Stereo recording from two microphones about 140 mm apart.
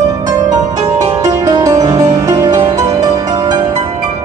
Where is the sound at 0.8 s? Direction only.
55° right (ahead or behind).